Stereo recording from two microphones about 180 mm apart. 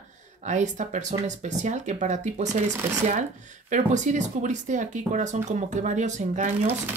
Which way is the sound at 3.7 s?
45° right (ahead or behind).